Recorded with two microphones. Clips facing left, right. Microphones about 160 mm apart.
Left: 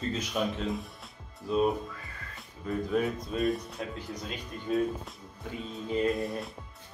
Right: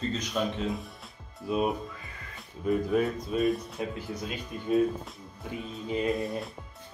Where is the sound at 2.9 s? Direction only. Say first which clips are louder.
Right 2 dB; centre (ahead or behind).